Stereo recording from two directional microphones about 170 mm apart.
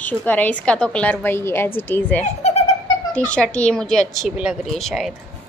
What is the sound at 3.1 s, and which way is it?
A woman's voice, 5° left (ahead or behind).